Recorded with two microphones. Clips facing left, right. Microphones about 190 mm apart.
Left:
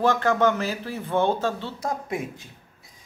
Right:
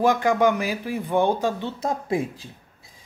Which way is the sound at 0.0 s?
15° right (ahead or behind).